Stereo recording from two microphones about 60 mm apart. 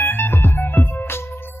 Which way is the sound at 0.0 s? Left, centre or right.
Left.